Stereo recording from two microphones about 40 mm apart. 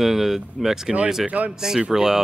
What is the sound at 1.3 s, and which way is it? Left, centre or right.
Speech, right.